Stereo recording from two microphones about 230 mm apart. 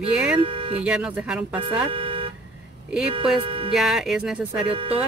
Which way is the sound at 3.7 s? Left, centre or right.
Centre.